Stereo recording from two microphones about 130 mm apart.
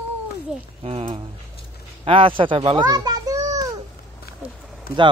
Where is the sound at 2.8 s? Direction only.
30° right (ahead or behind).